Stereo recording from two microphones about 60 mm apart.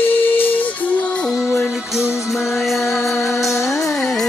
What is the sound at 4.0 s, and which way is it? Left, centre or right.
Music, centre.